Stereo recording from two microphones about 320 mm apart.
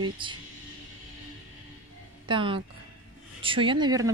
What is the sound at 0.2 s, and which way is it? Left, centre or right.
Speech, centre.